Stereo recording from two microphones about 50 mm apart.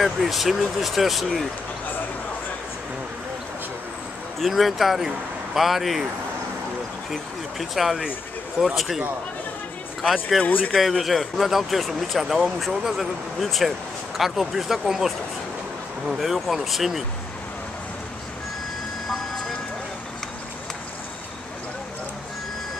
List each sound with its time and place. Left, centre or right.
0.0 s speech: centre
4.4 s speech: centre
7.1 s speech: centre
10.4 s speech: left
10.7 s speech: centre